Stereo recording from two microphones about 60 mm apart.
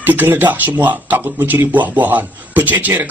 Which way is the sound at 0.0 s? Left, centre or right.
Right.